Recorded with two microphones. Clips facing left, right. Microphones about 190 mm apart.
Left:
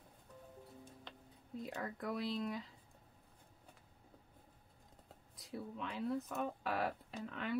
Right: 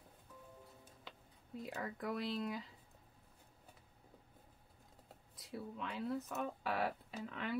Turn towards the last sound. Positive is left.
turn(degrees=0)  # may be behind; listen again after turning